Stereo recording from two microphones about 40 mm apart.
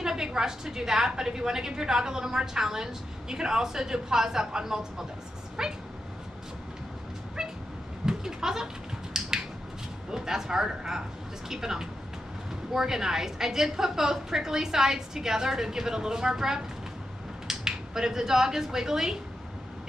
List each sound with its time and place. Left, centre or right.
0.0 s a woman's voice: centre
7.4 s cat: centre
8.0 s goat: centre
9.1 s a sound: centre
10.1 s a woman's voice: centre